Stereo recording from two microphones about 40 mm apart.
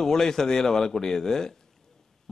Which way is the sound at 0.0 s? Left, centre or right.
Centre.